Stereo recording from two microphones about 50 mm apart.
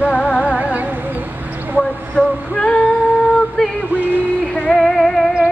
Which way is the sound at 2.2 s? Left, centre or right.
Centre.